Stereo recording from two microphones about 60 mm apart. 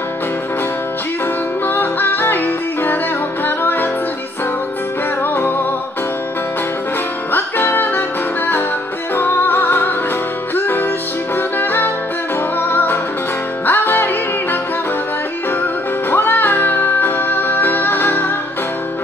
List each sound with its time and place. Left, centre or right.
1.7 s music: left
5.2 s music: left
7.3 s music: left
9.1 s music: left
15.6 s music: left